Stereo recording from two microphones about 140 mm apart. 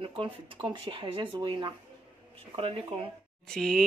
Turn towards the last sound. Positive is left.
turn(degrees=5)  # may be behind; listen again after turning